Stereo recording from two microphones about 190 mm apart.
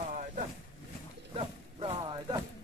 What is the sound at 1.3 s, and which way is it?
Wild animals, 25° right (ahead or behind).